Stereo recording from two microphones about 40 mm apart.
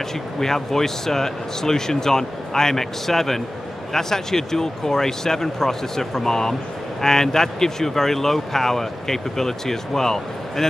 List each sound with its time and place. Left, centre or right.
0.4 s speech: centre